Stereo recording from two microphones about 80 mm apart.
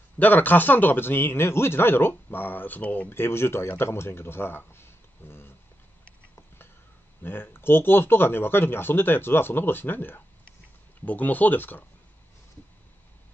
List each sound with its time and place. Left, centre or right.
0.2 s a man's voice: left
7.2 s a man's voice: left